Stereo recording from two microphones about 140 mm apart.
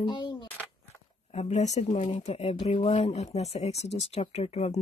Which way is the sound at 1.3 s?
55° left (ahead or behind).